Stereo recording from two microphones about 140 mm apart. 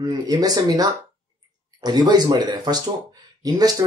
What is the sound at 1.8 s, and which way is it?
Speech, 30° right (ahead or behind).